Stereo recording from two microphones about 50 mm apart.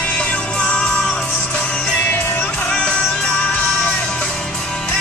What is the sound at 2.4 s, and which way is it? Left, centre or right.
Music, centre.